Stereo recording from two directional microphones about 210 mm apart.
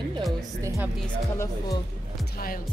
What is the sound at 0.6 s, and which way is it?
Speech, 15° right (ahead or behind).